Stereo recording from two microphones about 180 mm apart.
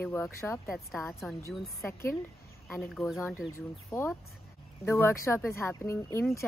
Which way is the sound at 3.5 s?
15° left (ahead or behind).